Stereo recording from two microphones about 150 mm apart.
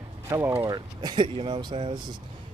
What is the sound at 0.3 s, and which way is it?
A man's voice, 15° right (ahead or behind).